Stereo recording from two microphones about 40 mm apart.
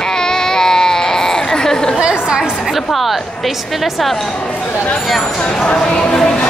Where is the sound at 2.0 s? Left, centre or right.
Right.